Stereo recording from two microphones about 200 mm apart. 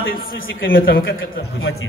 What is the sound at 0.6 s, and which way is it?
Speech, 50° left (ahead or behind).